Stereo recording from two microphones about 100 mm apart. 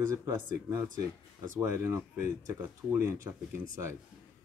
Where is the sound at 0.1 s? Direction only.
30° right (ahead or behind).